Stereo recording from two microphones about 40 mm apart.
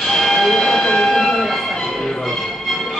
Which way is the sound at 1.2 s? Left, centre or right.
Centre.